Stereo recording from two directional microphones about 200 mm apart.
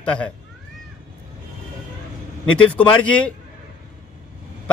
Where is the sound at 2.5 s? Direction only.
5° left (ahead or behind).